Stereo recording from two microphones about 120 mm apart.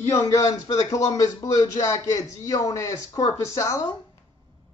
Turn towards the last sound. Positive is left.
turn(degrees=30)  # may be behind; listen again after turning